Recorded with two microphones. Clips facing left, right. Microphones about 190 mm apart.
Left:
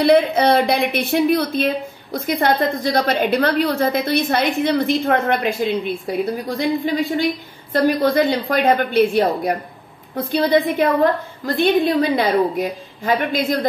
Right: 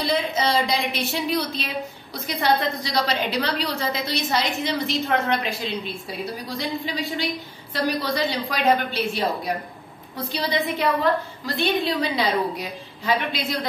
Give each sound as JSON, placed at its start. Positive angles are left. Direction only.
{"t": 0.0, "sound": "a woman's voice", "side_deg": 60}